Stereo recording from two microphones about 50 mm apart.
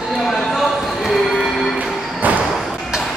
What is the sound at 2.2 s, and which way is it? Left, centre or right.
Thump, right.